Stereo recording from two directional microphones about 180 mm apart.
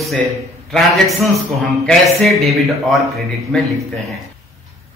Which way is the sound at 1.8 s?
Centre (ahead or behind).